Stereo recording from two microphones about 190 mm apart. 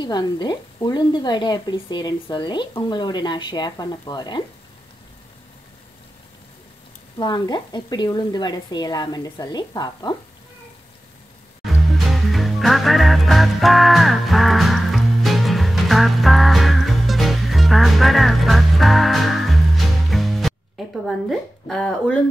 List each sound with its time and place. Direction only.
0.0 s speech: 20° left (ahead or behind)
7.2 s speech: 20° left (ahead or behind)
11.6 s music: centre (ahead or behind)